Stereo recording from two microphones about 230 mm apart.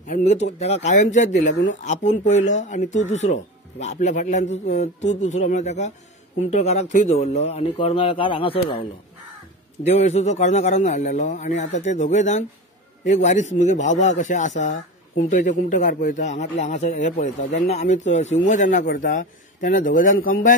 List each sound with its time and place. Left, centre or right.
0.0 s a man's voice: left
9.8 s a man's voice: left